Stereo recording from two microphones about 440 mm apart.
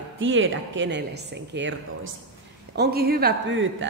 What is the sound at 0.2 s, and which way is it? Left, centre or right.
A woman's voice, right.